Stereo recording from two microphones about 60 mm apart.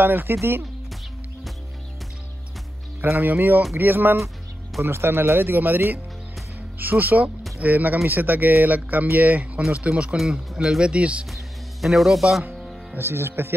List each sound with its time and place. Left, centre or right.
0.0 s speech: right
3.3 s speech: right
10.1 s speech: centre
11.0 s speech: right
11.8 s speech: centre
12.9 s speech: right